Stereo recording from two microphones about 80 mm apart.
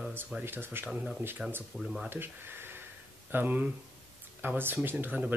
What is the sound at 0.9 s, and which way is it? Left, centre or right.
Speech, centre.